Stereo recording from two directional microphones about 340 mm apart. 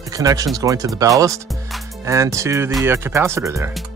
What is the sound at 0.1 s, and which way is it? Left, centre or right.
Speech, centre.